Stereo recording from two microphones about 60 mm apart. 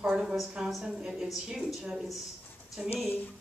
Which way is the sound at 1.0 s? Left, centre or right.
Centre.